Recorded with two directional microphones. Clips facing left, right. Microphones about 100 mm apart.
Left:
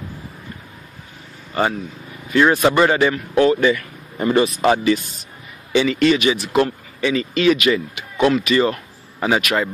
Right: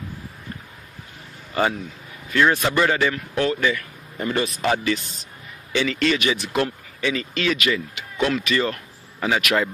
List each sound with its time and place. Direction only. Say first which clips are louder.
1.5 s a man's voice: left 2 dB; centre (ahead or behind)
2.3 s a man's voice: left 5 dB; 15° left (ahead or behind)
4.4 s speech: left 6 dB; 15° left (ahead or behind)
7.4 s speech: left 7 dB; 20° left (ahead or behind)
8.3 s speech: left 7 dB; 10° left (ahead or behind)
9.4 s speech: left 1 dB; centre (ahead or behind)